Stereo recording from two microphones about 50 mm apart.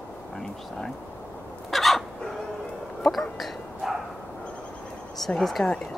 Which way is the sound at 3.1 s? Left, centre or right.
Centre.